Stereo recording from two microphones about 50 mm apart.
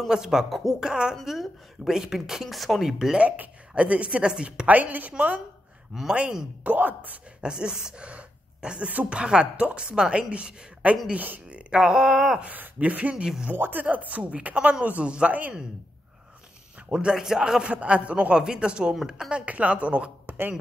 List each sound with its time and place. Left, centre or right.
0.1 s speech: centre
3.2 s speech: right
4.6 s speech: right
5.9 s speech: centre
6.6 s speech: right
7.4 s speech: centre
11.1 s speech: right
11.4 s speech: centre
12.4 s speech: right
13.1 s speech: centre
13.5 s speech: right
16.9 s speech: centre
19.4 s speech: right